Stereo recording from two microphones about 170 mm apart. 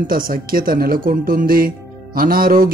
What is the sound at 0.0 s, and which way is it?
A man's voice, 55° right (ahead or behind).